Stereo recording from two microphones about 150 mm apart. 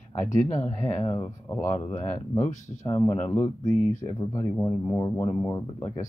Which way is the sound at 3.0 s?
15° left (ahead or behind).